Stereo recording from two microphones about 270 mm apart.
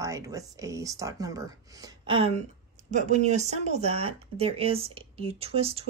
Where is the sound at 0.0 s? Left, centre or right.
Centre.